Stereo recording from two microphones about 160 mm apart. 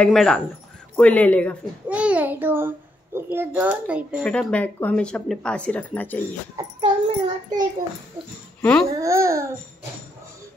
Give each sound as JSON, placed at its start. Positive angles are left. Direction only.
{"t": 0.0, "sound": "speech", "side_deg": 5}
{"t": 1.9, "sound": "speech", "side_deg": -10}
{"t": 4.2, "sound": "speech", "side_deg": 5}
{"t": 6.8, "sound": "child singing", "side_deg": -35}
{"t": 8.8, "sound": "speech", "side_deg": -20}